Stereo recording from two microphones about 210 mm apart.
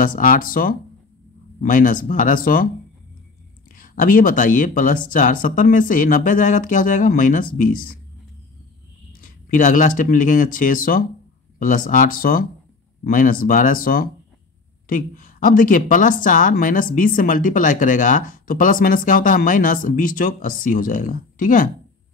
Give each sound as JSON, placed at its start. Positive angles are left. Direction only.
{"t": 0.0, "sound": "a woman's voice", "side_deg": 40}
{"t": 3.7, "sound": "a woman's voice", "side_deg": 40}
{"t": 9.2, "sound": "a woman's voice", "side_deg": 40}